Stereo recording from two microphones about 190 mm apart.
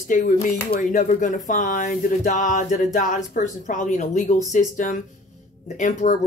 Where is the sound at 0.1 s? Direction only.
40° left (ahead or behind).